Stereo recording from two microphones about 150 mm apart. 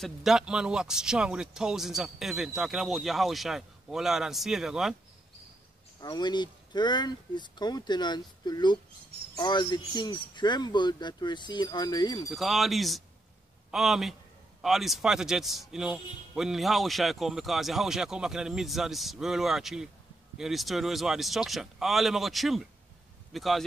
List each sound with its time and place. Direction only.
0.0 s a man's voice: centre (ahead or behind)
5.9 s speech: 30° left (ahead or behind)
12.3 s a man's voice: centre (ahead or behind)